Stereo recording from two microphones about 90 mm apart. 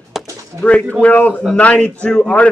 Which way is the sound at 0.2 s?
Centre (ahead or behind).